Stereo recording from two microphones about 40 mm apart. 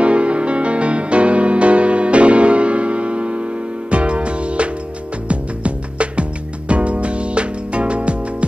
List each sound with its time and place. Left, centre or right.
0.0 s music: right